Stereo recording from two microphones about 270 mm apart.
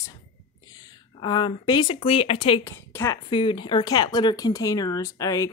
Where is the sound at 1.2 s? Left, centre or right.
Centre.